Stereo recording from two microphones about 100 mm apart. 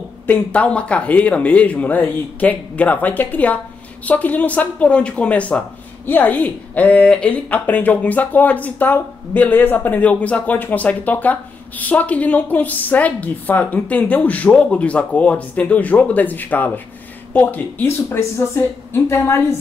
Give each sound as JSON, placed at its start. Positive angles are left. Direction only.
{"t": 0.3, "sound": "speech", "side_deg": 15}